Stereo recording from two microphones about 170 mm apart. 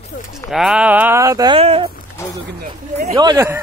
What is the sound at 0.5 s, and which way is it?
Speech, 5° right (ahead or behind).